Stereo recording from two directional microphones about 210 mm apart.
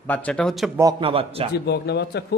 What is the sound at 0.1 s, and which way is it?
Speech, 5° left (ahead or behind).